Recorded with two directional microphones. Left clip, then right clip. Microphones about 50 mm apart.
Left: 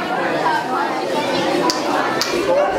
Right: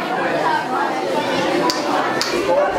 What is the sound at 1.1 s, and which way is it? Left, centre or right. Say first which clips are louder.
Chatter: even; left.